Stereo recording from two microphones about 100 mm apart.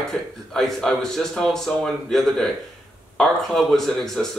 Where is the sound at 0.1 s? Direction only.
Centre (ahead or behind).